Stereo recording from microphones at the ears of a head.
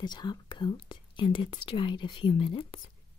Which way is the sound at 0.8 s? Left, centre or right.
Left.